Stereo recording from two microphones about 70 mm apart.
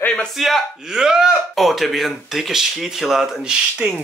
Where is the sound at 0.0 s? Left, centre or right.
Centre.